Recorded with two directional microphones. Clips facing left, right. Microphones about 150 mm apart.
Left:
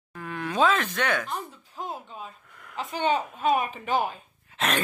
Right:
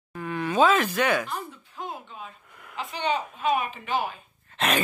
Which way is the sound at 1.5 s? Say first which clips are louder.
Left 1 dB; 40° left (ahead or behind).